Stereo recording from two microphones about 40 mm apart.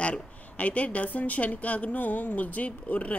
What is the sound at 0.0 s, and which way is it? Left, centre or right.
Speech, left.